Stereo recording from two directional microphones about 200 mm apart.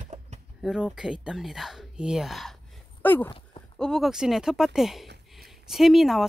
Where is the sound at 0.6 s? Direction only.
Centre (ahead or behind).